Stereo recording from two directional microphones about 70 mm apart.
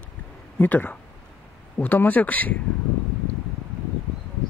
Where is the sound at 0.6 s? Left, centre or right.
Left.